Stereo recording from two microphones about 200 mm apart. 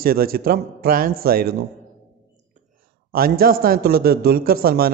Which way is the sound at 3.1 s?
50° right (ahead or behind).